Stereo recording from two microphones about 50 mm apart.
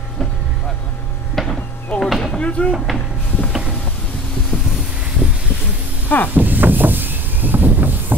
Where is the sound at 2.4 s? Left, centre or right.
Left.